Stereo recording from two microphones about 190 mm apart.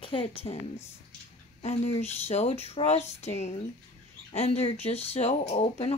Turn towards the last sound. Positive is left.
turn(degrees=35)  # may be behind; listen again after turning